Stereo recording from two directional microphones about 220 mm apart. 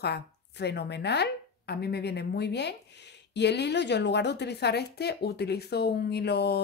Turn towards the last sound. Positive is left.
turn(degrees=50)  # may be behind; listen again after turning